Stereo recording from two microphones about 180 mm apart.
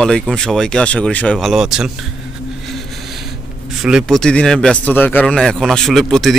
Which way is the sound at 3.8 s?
Centre (ahead or behind).